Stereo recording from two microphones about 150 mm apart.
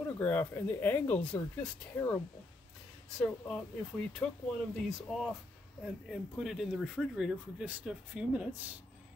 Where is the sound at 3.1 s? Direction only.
5° left (ahead or behind).